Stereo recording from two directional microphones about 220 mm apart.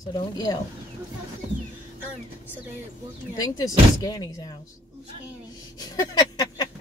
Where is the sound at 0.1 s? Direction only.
20° left (ahead or behind).